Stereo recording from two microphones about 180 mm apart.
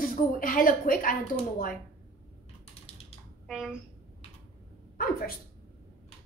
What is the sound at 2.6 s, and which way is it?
Typing, 35° left (ahead or behind).